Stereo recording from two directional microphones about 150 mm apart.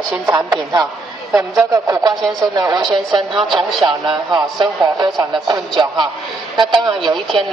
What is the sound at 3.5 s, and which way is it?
Speech, centre (ahead or behind).